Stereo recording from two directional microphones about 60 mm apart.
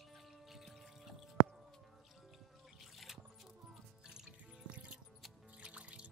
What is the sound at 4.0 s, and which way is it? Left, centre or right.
Music, centre.